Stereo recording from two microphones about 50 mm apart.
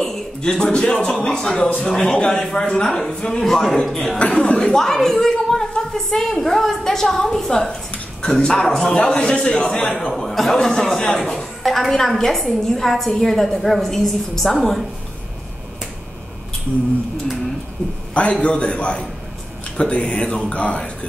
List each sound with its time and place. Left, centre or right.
0.0 s a man's voice: centre
1.6 s speech: left
1.9 s a man's voice: centre
8.9 s a man's voice: left
18.3 s speech: left